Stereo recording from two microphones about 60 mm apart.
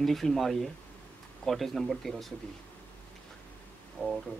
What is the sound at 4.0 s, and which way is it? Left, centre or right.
Music, left.